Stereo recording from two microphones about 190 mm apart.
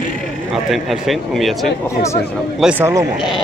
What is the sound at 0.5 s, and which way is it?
A man's voice, centre (ahead or behind).